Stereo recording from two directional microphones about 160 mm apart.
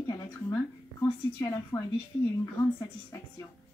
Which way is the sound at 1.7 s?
10° left (ahead or behind).